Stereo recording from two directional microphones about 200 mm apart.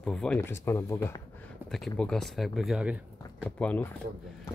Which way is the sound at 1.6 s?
Centre (ahead or behind).